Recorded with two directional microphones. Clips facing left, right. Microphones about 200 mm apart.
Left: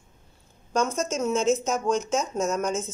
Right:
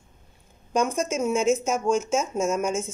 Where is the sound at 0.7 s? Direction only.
15° right (ahead or behind).